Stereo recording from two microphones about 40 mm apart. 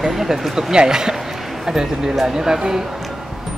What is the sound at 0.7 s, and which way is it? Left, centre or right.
Speech, centre.